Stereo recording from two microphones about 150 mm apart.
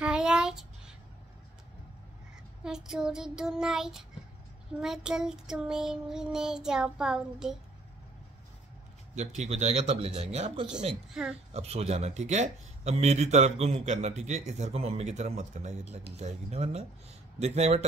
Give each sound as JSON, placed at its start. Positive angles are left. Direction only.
{"t": 0.0, "sound": "child singing", "side_deg": -5}
{"t": 2.6, "sound": "child singing", "side_deg": -5}
{"t": 9.1, "sound": "speech", "side_deg": -50}
{"t": 11.1, "sound": "child singing", "side_deg": -5}
{"t": 11.5, "sound": "speech", "side_deg": -45}